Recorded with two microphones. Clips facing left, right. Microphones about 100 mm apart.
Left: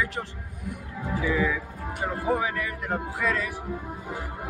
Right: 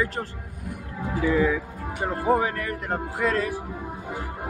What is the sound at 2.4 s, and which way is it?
A man's voice, 45° right (ahead or behind).